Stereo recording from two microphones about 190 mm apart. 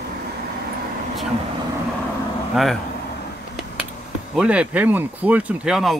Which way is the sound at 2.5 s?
Centre (ahead or behind).